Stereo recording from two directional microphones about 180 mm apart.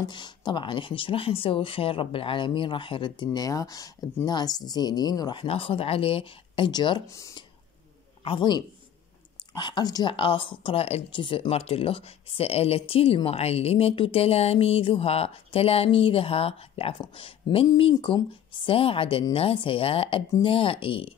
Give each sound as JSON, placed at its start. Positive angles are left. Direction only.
{"t": 0.1, "sound": "a man's voice", "side_deg": 25}